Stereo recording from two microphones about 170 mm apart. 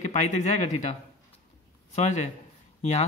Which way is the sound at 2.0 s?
40° left (ahead or behind).